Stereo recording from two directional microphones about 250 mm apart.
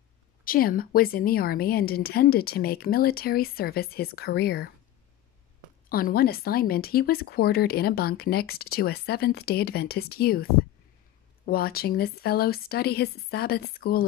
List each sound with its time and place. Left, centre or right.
0.4 s speech: left
5.9 s speech: left